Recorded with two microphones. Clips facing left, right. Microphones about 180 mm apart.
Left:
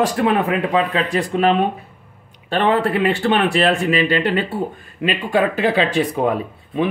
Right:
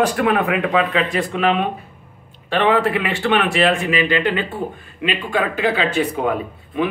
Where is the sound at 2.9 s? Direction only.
30° left (ahead or behind).